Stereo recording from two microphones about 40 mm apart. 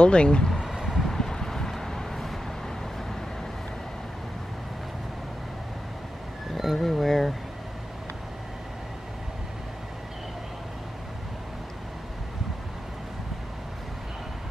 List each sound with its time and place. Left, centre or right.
0.0 s speech: left
0.5 s vehicle: centre
6.5 s speech: centre